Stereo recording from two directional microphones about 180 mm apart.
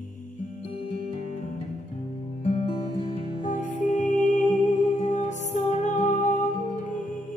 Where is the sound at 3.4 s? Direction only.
45° left (ahead or behind).